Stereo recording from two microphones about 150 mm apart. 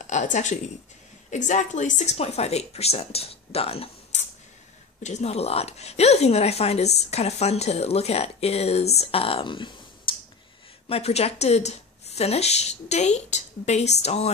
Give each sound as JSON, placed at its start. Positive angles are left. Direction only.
{"t": 0.0, "sound": "a woman's voice", "side_deg": 55}
{"t": 10.1, "sound": "clicking", "side_deg": 35}
{"t": 10.9, "sound": "speech", "side_deg": 45}